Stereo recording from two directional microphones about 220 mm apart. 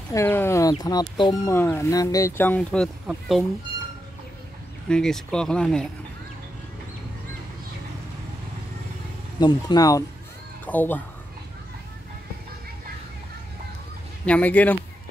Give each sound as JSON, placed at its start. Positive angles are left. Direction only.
{"t": 0.1, "sound": "speech", "side_deg": 10}
{"t": 4.8, "sound": "speech", "side_deg": 5}
{"t": 9.4, "sound": "speech", "side_deg": 20}
{"t": 14.2, "sound": "speech", "side_deg": 5}